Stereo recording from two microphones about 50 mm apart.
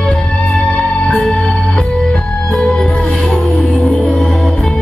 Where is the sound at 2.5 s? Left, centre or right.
Centre.